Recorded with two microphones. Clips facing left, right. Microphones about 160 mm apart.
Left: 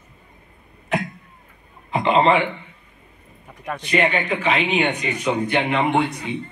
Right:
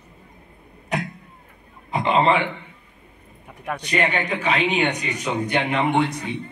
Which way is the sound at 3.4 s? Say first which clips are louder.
Even; 10° right (ahead or behind).